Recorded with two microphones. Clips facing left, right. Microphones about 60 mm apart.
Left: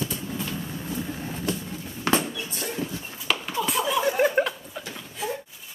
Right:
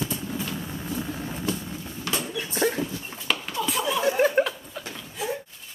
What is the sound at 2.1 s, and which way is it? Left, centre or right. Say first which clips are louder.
Mouse: left 7 dB; left.